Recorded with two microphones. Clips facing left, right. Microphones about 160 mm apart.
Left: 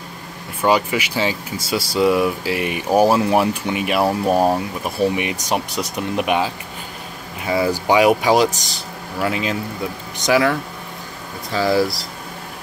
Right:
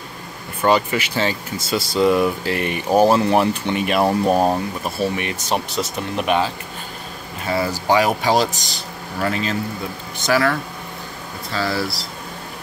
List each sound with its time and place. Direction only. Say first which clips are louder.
0.6 s speech: even; 10° left (ahead or behind)